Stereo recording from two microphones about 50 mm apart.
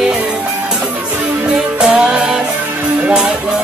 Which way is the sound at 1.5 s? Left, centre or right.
Centre.